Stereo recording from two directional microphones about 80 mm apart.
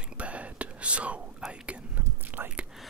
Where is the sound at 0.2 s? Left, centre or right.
Centre.